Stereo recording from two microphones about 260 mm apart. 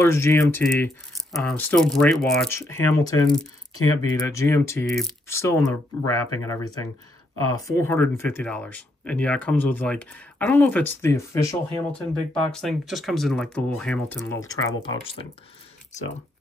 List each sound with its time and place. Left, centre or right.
0.0 s speech: centre